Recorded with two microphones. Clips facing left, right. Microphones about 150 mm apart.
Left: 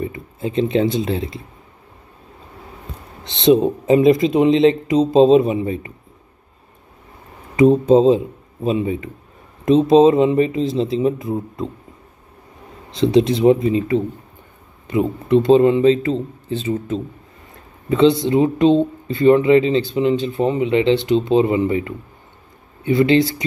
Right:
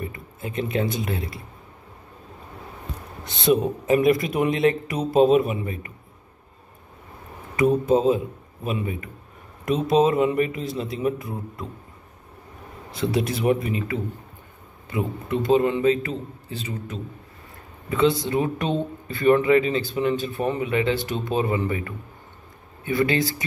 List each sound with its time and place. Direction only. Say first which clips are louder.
0.0 s speech: left 8 dB; 25° left (ahead or behind)
3.3 s speech: left 7 dB; 20° left (ahead or behind)
7.5 s speech: left 7 dB; 25° left (ahead or behind)
12.9 s speech: left 9 dB; 25° left (ahead or behind)